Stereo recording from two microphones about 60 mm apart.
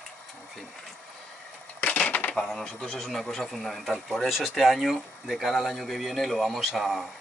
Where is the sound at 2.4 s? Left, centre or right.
Centre.